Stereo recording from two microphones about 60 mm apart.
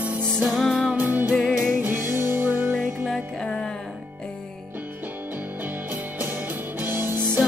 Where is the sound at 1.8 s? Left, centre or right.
Right.